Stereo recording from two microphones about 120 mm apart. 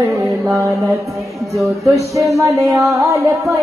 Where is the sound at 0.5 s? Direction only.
25° right (ahead or behind).